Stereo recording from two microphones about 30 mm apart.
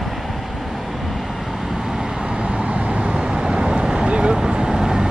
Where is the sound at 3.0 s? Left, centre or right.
Right.